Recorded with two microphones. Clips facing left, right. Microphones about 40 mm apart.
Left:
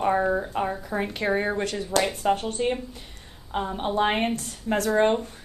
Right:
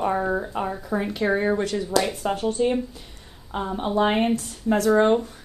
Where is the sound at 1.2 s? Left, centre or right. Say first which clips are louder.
Right 2 dB; centre.